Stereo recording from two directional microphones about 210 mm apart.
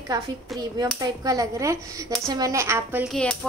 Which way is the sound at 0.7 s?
15° right (ahead or behind).